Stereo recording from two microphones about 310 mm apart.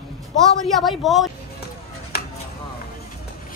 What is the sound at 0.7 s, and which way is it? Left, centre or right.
Speech, centre.